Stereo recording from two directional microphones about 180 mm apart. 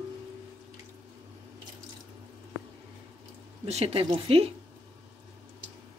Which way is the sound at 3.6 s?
35° right (ahead or behind).